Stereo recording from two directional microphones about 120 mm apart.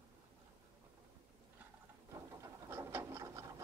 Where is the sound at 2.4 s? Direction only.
25° right (ahead or behind).